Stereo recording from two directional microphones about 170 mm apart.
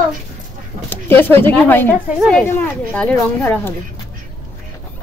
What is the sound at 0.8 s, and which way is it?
Speech, 10° left (ahead or behind).